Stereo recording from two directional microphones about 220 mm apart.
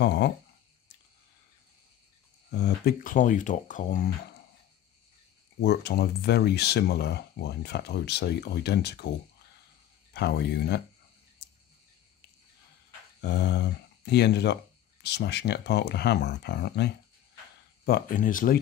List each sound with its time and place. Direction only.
0.0 s speech: 50° left (ahead or behind)
2.5 s speech: 45° left (ahead or behind)
5.6 s speech: 50° left (ahead or behind)
10.1 s speech: 50° left (ahead or behind)
13.2 s speech: 50° left (ahead or behind)
17.8 s speech: 40° left (ahead or behind)